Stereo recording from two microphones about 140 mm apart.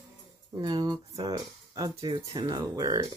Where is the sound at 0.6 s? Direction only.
30° right (ahead or behind).